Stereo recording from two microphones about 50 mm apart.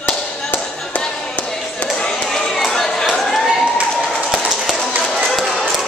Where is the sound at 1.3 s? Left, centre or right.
Centre.